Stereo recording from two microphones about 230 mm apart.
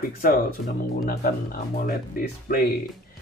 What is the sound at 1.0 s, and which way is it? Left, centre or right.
Speech, left.